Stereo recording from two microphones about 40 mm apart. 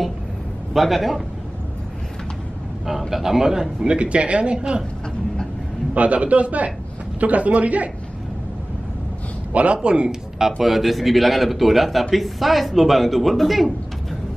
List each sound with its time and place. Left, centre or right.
0.7 s a man's voice: centre
2.9 s a man's voice: centre
3.8 s speech: right
5.9 s a man's voice: right
9.5 s a man's voice: right
9.8 s speech: right
10.4 s a man's voice: centre